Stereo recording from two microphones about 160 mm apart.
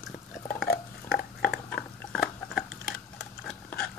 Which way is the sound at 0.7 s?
75° left (ahead or behind).